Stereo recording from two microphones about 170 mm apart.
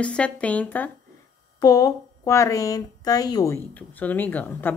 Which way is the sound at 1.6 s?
20° left (ahead or behind).